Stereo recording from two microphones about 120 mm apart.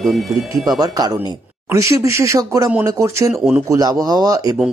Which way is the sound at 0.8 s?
30° right (ahead or behind).